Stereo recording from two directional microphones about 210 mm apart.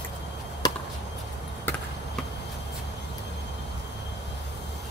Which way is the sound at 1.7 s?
10° left (ahead or behind).